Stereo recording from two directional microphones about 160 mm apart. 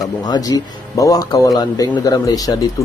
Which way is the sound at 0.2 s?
25° left (ahead or behind).